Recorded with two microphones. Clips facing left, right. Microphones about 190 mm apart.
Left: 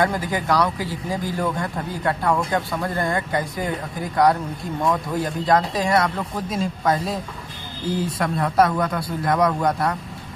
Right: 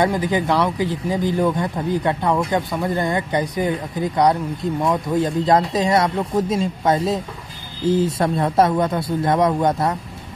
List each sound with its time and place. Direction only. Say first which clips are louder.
0.0 s speech: right 3 dB; 20° right (ahead or behind)